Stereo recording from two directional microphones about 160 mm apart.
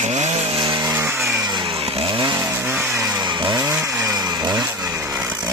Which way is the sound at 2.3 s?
15° right (ahead or behind).